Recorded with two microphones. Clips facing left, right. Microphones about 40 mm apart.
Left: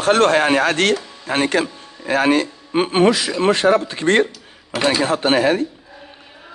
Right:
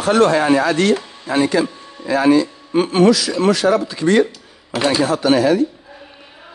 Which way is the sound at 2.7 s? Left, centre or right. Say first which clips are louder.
Right 2 dB; left.